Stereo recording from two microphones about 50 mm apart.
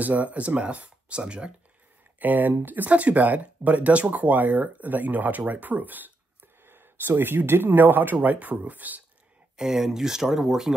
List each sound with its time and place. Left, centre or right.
0.0 s speech: right
2.1 s speech: right
6.6 s speech: right
9.6 s speech: centre